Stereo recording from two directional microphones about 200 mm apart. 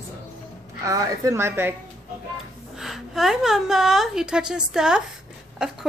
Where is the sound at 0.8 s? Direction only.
15° right (ahead or behind).